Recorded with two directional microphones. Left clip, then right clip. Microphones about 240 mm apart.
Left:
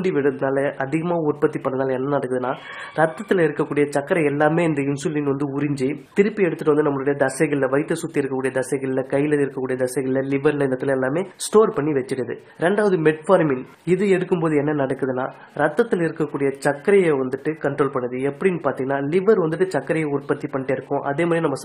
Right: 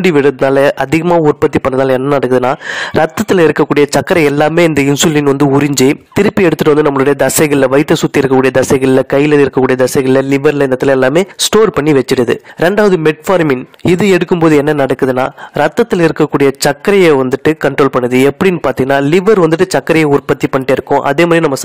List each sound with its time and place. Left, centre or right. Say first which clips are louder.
0.0 s a man's voice: right 11 dB; right